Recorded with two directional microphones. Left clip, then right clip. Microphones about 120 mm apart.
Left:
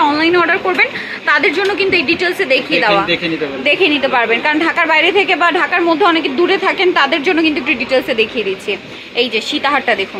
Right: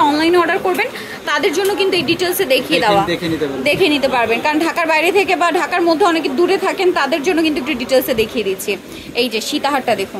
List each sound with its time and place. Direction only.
0.0 s a woman's voice: 35° right (ahead or behind)